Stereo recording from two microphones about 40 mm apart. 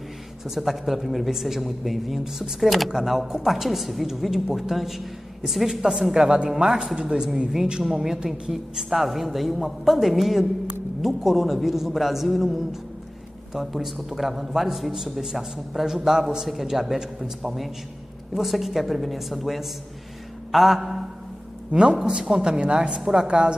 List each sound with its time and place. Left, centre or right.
0.6 s a man's voice: centre; by 7.2 s right
7.8 s a man's voice: centre
18.3 s a man's voice: centre
21.7 s a man's voice: right
22.2 s a woman's voice: centre